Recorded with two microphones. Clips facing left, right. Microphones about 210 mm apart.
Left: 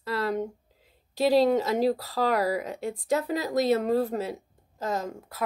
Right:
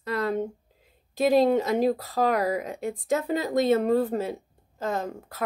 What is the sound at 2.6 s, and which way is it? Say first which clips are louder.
Speech: right 1 dB; 45° right (ahead or behind).